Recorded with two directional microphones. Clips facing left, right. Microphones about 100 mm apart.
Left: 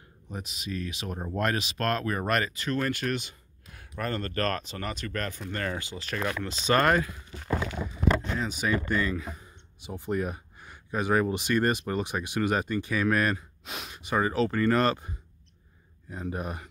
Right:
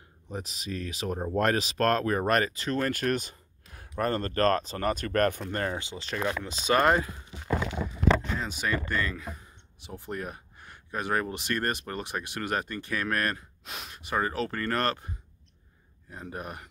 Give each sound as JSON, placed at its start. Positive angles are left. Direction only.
{"t": 0.3, "sound": "speech", "side_deg": -35}
{"t": 5.4, "sound": "speech", "side_deg": -35}
{"t": 5.7, "sound": "speech", "side_deg": -20}
{"t": 6.6, "sound": "speech", "side_deg": -10}
{"t": 6.9, "sound": "speech", "side_deg": -25}
{"t": 8.4, "sound": "speech", "side_deg": 5}